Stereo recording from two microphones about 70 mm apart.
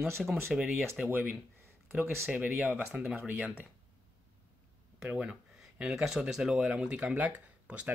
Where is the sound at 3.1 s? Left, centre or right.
Right.